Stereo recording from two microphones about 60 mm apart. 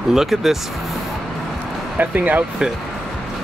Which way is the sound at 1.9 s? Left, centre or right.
Right.